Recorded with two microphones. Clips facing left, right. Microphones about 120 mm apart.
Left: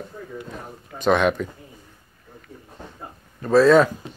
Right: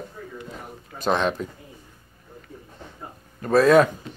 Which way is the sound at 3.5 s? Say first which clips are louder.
Left 1 dB; 50° right (ahead or behind).